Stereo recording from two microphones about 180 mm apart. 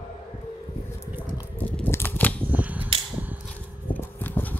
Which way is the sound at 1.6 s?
10° left (ahead or behind).